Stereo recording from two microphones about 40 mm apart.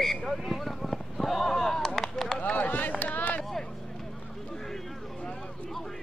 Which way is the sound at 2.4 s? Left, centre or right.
Left.